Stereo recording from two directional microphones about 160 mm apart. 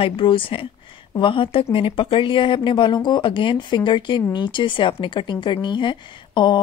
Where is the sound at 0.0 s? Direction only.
35° left (ahead or behind).